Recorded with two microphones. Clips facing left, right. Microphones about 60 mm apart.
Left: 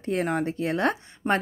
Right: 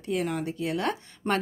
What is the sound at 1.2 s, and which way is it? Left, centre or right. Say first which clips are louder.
Speech: left 3 dB; centre.